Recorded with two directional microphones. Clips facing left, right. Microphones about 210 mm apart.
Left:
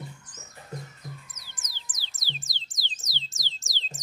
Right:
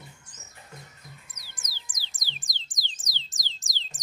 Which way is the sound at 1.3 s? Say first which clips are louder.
Even; 10° right (ahead or behind).